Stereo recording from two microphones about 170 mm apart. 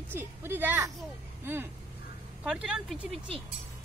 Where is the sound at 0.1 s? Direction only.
10° right (ahead or behind).